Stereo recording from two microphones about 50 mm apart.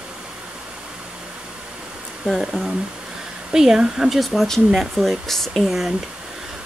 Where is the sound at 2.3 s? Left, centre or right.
Centre.